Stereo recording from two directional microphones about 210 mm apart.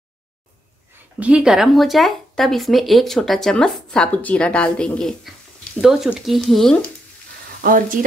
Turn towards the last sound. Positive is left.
turn(degrees=-40)  # may be behind; listen again after turning